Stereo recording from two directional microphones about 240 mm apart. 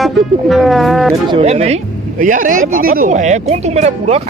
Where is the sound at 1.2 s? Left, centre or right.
Right.